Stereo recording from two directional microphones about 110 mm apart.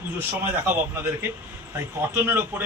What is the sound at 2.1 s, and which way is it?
Speech, 15° right (ahead or behind).